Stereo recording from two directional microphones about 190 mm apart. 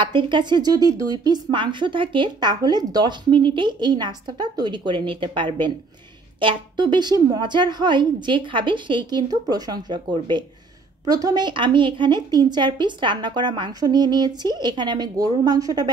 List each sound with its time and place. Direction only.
0.0 s speech: 25° right (ahead or behind)